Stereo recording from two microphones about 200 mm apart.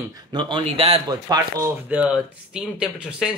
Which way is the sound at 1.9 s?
5° right (ahead or behind).